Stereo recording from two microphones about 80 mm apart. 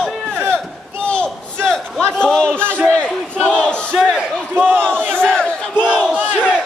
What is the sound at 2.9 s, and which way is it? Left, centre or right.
Battle cry, centre.